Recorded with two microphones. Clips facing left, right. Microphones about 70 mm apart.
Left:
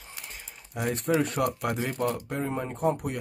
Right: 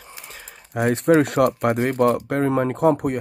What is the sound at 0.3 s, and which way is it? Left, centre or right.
Speech, right.